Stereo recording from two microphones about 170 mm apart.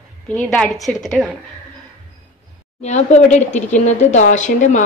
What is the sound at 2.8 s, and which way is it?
Speech, 40° left (ahead or behind).